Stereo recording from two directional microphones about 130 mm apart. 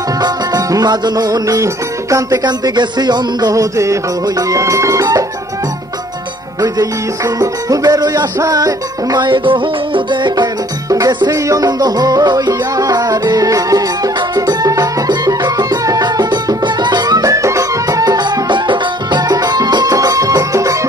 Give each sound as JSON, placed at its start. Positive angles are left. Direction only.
{"t": 0.2, "sound": "music", "side_deg": -30}
{"t": 7.3, "sound": "music", "side_deg": -30}